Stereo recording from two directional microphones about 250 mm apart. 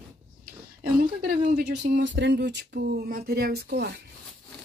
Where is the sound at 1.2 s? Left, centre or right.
Right.